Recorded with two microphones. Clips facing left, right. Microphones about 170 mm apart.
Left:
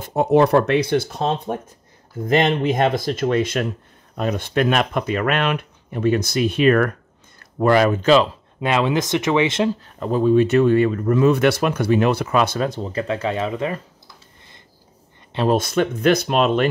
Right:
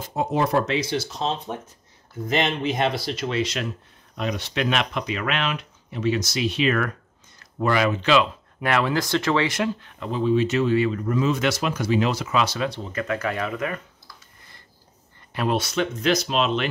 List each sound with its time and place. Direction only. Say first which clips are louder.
0.0 s speech: left 8 dB; 60° left (ahead or behind); by 8.3 s 40° left (ahead or behind)
8.5 s speech: left 3 dB; 20° left (ahead or behind)
9.8 s speech: left 6 dB; 40° left (ahead or behind)
12.9 s speech: left 4 dB; 30° left (ahead or behind)
15.5 s speech: left 5 dB; 50° left (ahead or behind)